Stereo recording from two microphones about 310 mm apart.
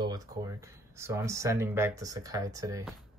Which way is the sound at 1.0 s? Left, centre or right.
Centre.